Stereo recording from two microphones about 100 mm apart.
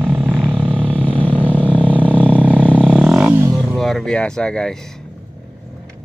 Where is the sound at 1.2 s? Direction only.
15° left (ahead or behind).